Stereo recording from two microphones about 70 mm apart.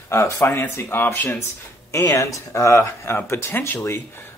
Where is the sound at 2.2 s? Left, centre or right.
Left.